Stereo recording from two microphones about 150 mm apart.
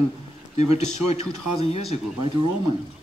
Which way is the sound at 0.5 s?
45° left (ahead or behind).